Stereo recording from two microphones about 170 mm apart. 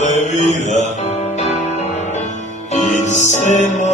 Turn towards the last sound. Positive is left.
turn(degrees=45)  # may be behind; listen again after turning